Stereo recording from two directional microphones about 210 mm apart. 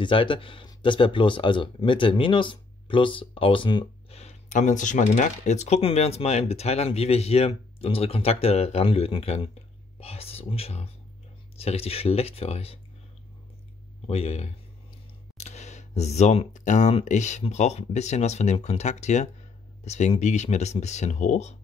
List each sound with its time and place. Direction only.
0.0 s speech: 25° left (ahead or behind)
14.0 s speech: 30° left (ahead or behind)